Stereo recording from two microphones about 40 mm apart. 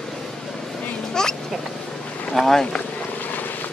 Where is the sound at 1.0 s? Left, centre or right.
Centre.